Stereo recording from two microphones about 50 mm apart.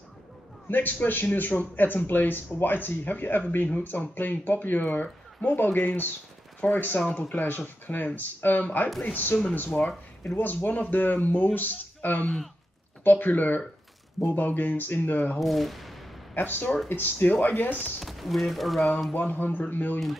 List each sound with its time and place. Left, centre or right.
0.7 s a man's voice: left
8.6 s speech: left
15.3 s speech: centre
16.3 s speech: left
18.0 s speech: centre
19.1 s speech: left